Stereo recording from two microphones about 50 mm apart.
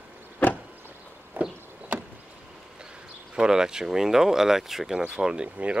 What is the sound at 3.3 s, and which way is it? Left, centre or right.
Speech, centre.